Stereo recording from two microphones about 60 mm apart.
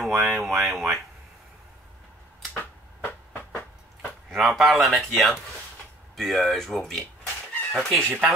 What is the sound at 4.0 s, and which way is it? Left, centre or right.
Speech, centre.